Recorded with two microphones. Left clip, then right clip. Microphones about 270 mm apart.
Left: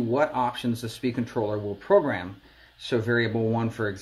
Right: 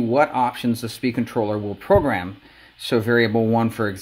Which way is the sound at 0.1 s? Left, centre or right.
Right.